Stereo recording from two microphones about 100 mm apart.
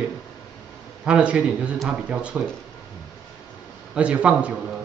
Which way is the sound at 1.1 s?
10° right (ahead or behind).